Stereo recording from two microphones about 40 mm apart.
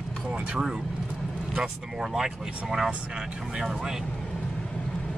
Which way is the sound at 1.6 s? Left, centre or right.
Centre.